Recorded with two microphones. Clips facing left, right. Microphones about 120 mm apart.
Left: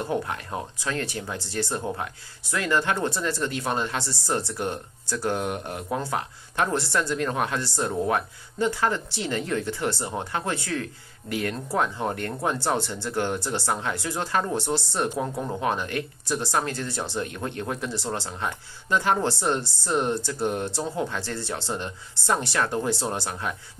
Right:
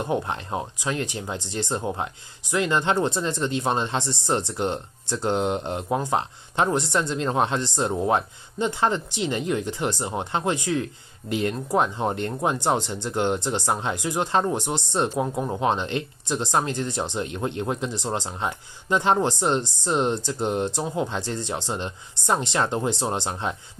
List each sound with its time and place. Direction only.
0.0 s speech: 20° right (ahead or behind)